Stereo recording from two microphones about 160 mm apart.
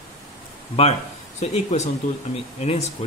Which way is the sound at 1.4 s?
45° left (ahead or behind).